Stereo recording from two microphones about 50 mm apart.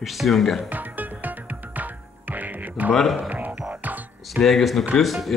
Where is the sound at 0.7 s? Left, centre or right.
Right.